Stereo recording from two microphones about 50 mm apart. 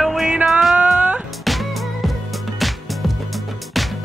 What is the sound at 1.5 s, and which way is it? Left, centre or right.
Music, centre.